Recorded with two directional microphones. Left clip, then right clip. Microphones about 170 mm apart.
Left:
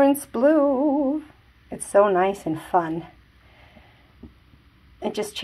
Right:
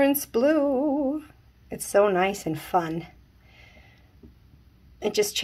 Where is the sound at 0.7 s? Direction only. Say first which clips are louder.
Left 3 dB; 20° left (ahead or behind).